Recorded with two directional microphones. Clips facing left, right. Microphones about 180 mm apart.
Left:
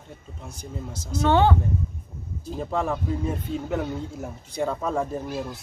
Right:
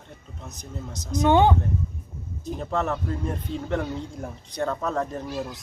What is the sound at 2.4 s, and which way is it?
Speech, 10° left (ahead or behind).